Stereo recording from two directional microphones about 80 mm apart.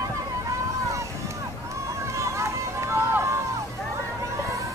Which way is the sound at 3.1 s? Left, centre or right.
Right.